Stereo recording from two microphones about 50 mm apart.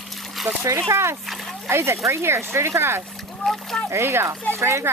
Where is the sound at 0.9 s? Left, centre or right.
Right.